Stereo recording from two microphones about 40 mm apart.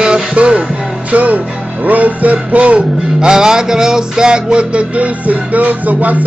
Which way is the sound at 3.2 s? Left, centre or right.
Centre.